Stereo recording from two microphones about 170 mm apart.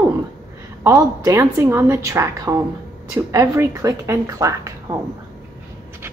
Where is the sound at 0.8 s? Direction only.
20° right (ahead or behind).